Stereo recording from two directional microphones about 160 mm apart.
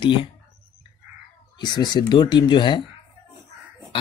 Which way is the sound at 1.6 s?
25° left (ahead or behind).